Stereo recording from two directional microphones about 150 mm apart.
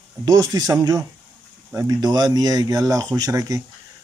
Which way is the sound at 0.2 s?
25° right (ahead or behind).